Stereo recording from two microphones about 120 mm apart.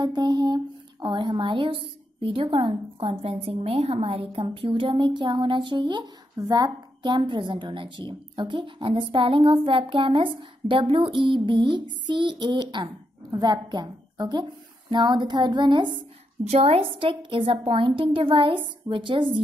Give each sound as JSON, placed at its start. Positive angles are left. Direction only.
{"t": 0.0, "sound": "a woman's voice", "side_deg": -35}
{"t": 16.4, "sound": "a woman's voice", "side_deg": -60}